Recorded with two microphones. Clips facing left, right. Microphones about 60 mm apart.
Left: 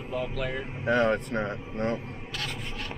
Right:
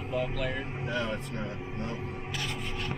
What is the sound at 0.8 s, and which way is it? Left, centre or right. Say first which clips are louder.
Speech: left 11 dB; left.